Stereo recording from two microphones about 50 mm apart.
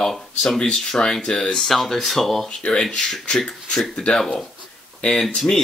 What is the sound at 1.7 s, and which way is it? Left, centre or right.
Speech, centre.